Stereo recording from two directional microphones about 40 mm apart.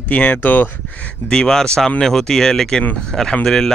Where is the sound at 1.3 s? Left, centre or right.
Centre.